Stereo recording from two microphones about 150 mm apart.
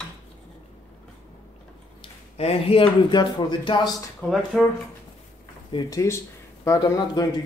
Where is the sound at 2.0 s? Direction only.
40° left (ahead or behind).